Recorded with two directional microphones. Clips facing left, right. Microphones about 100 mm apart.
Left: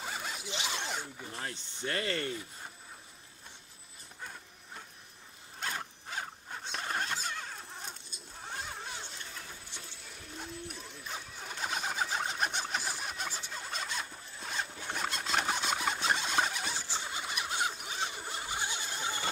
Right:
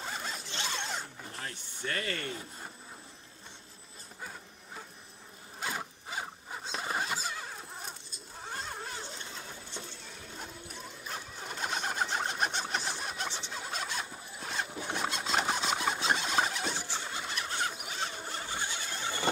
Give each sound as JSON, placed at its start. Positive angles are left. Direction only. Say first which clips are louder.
{"t": 0.0, "sound": "zipper", "louder": "even", "side_deg": 5}
{"t": 1.9, "sound": "speech", "louder": "left 2 dB", "side_deg": 25}
{"t": 4.2, "sound": "vehicle", "louder": "right 1 dB", "side_deg": -5}
{"t": 5.6, "sound": "zipper", "louder": "right 1 dB", "side_deg": -5}
{"t": 10.3, "sound": "a sound", "louder": "left 3 dB", "side_deg": 0}
{"t": 13.5, "sound": "squeal", "louder": "right 2 dB", "side_deg": -5}
{"t": 14.7, "sound": "zipper", "louder": "right 3 dB", "side_deg": -15}
{"t": 15.0, "sound": "squeal", "louder": "right 1 dB", "side_deg": 0}
{"t": 16.7, "sound": "printer", "louder": "right 1 dB", "side_deg": -15}
{"t": 17.0, "sound": "printer", "louder": "even", "side_deg": 5}
{"t": 17.9, "sound": "a sound", "louder": "even", "side_deg": 10}